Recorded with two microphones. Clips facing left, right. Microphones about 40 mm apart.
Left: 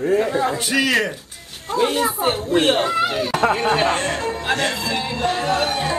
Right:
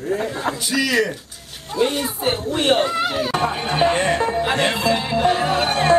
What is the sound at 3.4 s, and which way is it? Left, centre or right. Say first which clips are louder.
Speech: left 3 dB; left.